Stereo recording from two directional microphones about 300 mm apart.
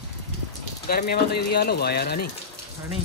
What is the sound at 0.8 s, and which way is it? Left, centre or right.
Speech, left.